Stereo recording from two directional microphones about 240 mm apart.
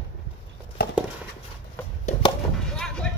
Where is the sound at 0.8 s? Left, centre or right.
Left.